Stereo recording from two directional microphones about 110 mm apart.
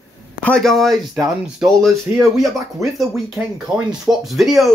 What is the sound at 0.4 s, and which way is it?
Speech, 10° left (ahead or behind).